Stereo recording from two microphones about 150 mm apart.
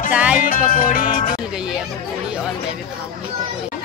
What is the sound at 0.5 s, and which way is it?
Music, 65° left (ahead or behind).